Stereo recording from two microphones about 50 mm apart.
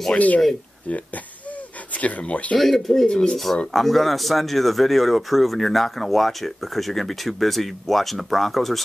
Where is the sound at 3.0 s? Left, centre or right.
Centre.